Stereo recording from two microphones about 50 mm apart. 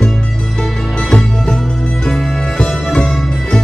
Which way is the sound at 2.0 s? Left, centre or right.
Centre.